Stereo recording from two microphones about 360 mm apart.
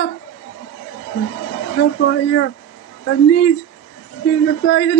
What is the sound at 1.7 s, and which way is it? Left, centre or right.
Speech, left.